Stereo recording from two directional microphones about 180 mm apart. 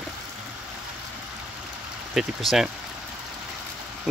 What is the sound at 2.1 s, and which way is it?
Speech, centre (ahead or behind).